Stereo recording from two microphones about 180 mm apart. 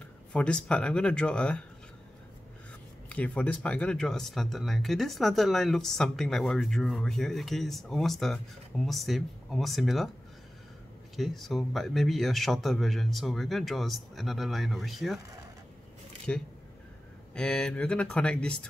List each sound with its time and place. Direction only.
0.3 s speech: 5° left (ahead or behind)
3.1 s speech: 5° left (ahead or behind)
11.1 s speech: centre (ahead or behind)
16.3 s speech: 10° left (ahead or behind)